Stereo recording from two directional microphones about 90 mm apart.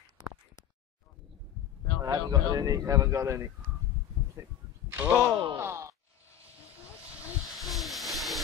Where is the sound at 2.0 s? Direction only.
40° right (ahead or behind).